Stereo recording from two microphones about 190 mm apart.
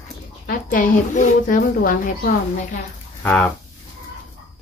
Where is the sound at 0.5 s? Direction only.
45° left (ahead or behind).